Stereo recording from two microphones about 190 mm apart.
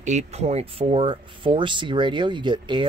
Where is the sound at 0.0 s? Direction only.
40° right (ahead or behind).